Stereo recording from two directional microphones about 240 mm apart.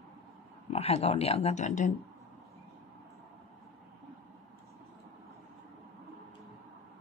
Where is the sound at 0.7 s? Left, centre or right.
Left.